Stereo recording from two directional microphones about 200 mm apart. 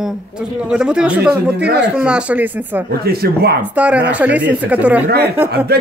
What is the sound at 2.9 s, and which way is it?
Speech, 50° right (ahead or behind).